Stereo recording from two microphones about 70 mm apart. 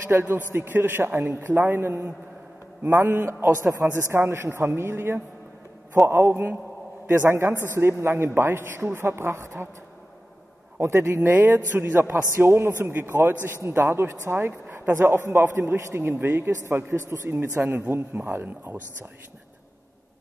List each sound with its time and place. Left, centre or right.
0.1 s a man's voice: right
10.8 s a man's voice: right